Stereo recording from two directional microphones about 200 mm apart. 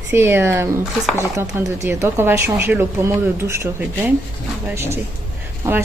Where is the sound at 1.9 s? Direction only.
10° right (ahead or behind).